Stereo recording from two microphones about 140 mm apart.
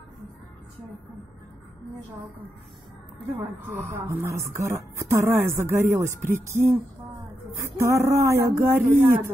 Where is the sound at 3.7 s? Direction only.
15° right (ahead or behind).